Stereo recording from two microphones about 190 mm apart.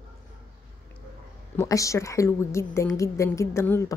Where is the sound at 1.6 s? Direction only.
15° left (ahead or behind).